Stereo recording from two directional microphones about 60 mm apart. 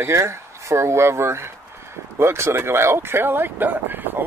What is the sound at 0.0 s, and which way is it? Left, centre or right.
Speech, right.